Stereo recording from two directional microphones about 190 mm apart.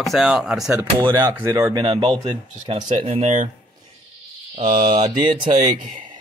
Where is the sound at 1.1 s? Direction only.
20° right (ahead or behind).